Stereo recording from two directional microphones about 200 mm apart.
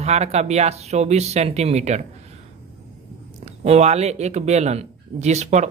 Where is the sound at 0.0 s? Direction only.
30° right (ahead or behind).